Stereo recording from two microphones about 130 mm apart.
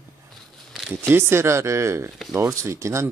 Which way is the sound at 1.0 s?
20° right (ahead or behind).